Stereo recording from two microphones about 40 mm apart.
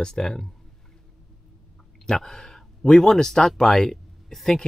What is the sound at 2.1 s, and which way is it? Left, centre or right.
Speech, centre.